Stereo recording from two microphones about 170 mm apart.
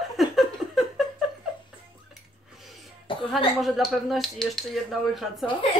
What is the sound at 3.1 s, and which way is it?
Cough, 30° left (ahead or behind).